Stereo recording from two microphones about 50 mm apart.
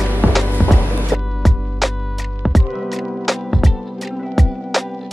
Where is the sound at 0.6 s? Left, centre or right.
Left.